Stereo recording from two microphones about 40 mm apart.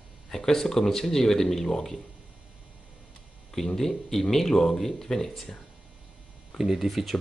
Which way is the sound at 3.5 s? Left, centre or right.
Centre.